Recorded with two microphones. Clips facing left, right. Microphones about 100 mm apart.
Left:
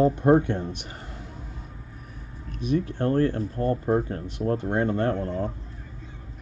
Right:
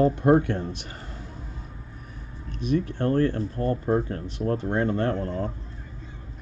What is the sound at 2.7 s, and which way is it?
Speech, 15° left (ahead or behind).